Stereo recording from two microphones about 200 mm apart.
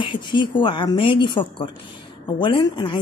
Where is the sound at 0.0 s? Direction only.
25° left (ahead or behind).